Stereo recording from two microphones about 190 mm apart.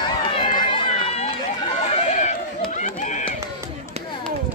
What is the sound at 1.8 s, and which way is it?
Neigh, 40° left (ahead or behind).